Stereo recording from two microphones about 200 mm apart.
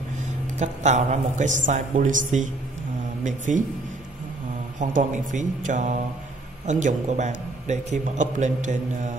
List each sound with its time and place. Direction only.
0.6 s a man's voice: 35° right (ahead or behind)
4.7 s a man's voice: 40° right (ahead or behind)